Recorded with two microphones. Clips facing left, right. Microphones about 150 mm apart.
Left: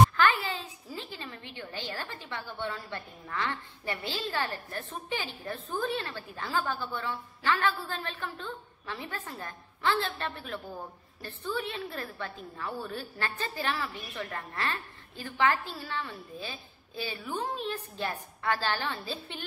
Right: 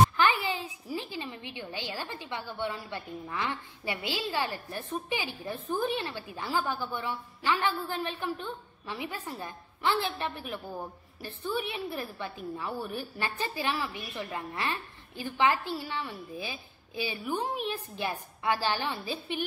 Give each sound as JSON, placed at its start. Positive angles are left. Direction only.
{"t": 0.2, "sound": "a woman's voice", "side_deg": -15}